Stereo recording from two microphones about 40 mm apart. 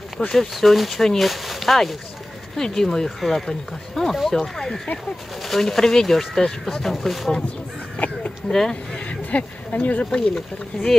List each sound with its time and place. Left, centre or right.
0.3 s speech: centre
2.5 s speech: centre
3.2 s speech: centre
8.0 s speech: left
8.5 s speech: centre
9.1 s speech: left
10.3 s speech: centre